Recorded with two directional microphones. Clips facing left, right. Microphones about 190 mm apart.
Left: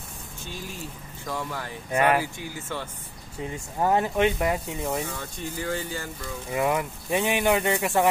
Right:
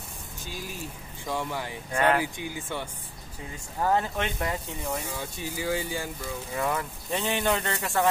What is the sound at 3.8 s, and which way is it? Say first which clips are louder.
Speech: left 4 dB; 15° left (ahead or behind).